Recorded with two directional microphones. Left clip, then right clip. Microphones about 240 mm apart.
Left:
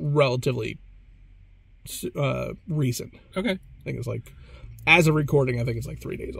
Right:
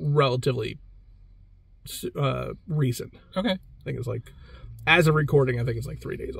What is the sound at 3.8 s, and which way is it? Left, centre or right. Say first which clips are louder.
Speech: left 2 dB; centre.